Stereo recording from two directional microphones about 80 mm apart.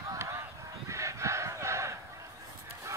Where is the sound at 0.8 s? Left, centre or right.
Right.